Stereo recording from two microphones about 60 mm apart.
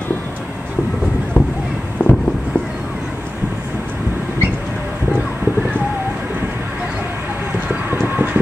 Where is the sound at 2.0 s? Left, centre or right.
Left.